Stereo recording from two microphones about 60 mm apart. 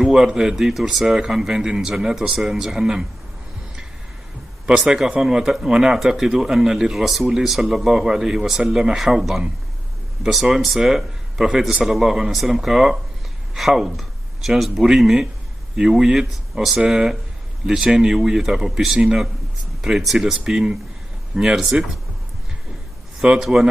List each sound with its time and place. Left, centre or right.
0.0 s speech: centre
4.6 s speech: centre
23.2 s speech: centre